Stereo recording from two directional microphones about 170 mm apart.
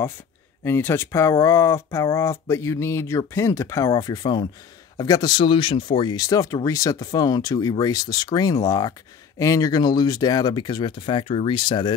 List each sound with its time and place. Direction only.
0.7 s speech: 15° left (ahead or behind)